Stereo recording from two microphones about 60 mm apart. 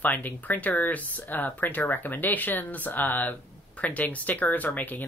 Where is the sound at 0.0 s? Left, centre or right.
Left.